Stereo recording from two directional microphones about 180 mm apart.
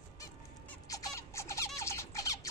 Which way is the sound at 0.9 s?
20° left (ahead or behind).